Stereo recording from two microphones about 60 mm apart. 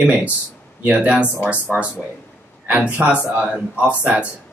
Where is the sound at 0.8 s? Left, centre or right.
Right.